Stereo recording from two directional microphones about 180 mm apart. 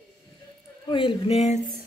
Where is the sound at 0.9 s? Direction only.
30° left (ahead or behind).